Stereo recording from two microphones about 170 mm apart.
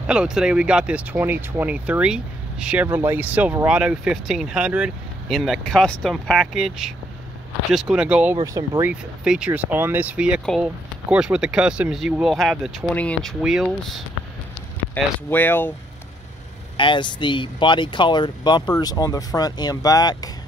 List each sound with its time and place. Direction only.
0.0 s speech: 5° right (ahead or behind)
8.4 s speech: 20° right (ahead or behind)
9.2 s speech: 5° right (ahead or behind)
15.2 s speech: 10° left (ahead or behind)
16.7 s speech: 30° left (ahead or behind)